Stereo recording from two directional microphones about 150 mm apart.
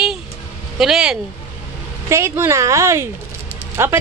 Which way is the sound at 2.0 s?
15° right (ahead or behind).